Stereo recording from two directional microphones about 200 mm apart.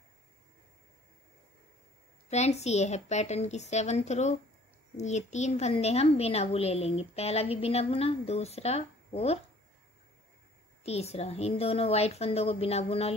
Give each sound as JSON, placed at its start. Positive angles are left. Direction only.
{"t": 2.2, "sound": "a woman's voice", "side_deg": 35}
{"t": 10.8, "sound": "a woman's voice", "side_deg": 30}